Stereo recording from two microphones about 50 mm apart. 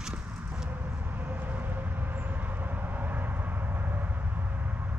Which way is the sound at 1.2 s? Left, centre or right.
Right.